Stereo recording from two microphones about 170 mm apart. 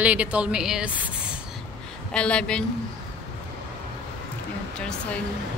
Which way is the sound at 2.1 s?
5° left (ahead or behind).